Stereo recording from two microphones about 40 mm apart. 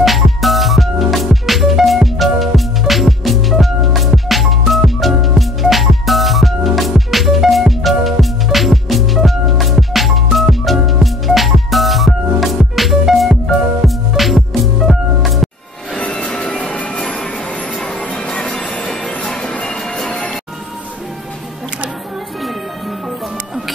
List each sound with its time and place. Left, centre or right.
0.0 s music: centre
16.0 s music: left